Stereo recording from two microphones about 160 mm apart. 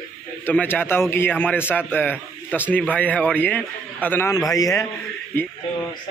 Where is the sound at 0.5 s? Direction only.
10° left (ahead or behind).